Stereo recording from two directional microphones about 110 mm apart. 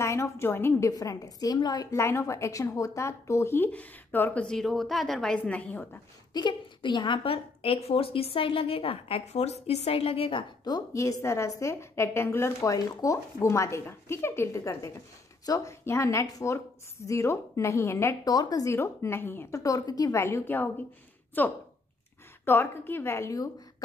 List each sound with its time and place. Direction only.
0.0 s a woman's voice: 25° left (ahead or behind)
1.9 s a woman's voice: 25° left (ahead or behind)
6.3 s a woman's voice: 45° left (ahead or behind)
10.6 s a woman's voice: 35° left (ahead or behind)
18.3 s a woman's voice: 35° left (ahead or behind)